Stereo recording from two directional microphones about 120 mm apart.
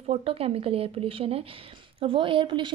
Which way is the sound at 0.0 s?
55° right (ahead or behind).